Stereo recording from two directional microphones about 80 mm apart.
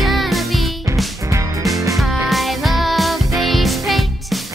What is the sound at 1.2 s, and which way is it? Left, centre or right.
Music, right.